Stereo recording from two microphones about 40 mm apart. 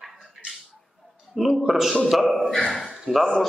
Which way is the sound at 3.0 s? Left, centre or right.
Centre.